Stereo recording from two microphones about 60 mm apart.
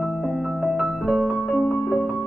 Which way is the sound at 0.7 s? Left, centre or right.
Centre.